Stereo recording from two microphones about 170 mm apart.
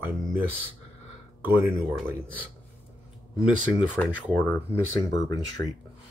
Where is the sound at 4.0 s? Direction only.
10° left (ahead or behind).